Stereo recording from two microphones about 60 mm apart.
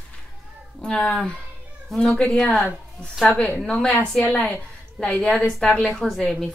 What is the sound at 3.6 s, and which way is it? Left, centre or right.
Speech, centre.